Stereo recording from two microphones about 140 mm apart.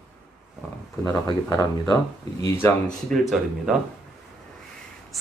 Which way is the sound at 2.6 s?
Centre (ahead or behind).